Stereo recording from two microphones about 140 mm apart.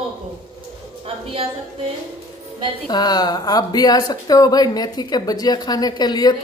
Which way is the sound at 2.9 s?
30° left (ahead or behind).